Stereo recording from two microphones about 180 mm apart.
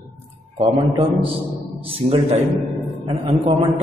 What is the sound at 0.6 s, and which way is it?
A man's voice, 30° right (ahead or behind).